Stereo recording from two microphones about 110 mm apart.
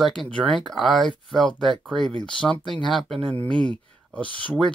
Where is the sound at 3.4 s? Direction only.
10° left (ahead or behind).